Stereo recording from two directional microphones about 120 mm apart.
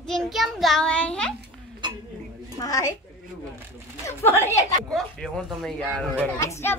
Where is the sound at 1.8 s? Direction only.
40° right (ahead or behind).